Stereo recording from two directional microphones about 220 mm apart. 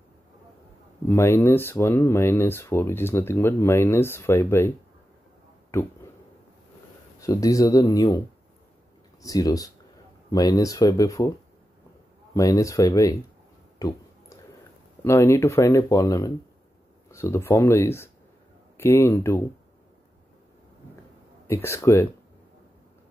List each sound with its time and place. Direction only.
1.0 s speech: 10° left (ahead or behind)
7.2 s speech: 15° left (ahead or behind)
9.2 s speech: 15° left (ahead or behind)
12.4 s speech: 15° left (ahead or behind)
13.7 s a sound: 15° left (ahead or behind)
15.0 s speech: 10° left (ahead or behind)
21.5 s speech: 10° left (ahead or behind)